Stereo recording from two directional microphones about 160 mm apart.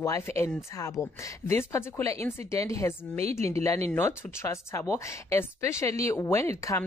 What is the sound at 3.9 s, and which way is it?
A woman's voice, 15° left (ahead or behind).